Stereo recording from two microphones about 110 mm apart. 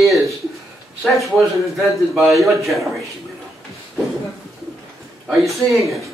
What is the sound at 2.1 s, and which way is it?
Speech, centre (ahead or behind).